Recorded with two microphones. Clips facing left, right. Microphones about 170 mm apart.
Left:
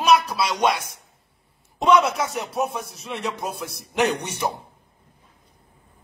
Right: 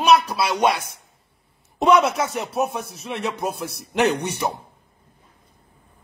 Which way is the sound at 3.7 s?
Centre (ahead or behind).